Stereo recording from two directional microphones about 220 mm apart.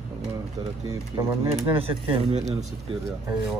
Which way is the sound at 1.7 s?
25° right (ahead or behind).